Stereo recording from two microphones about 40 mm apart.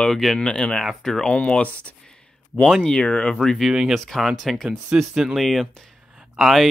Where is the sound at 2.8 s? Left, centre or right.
Centre.